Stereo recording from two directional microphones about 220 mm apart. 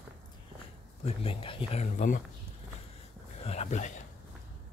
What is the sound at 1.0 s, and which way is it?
Speech, 25° left (ahead or behind).